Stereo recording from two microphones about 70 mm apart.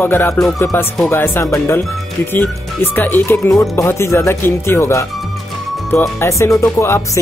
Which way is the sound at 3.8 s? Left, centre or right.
Left.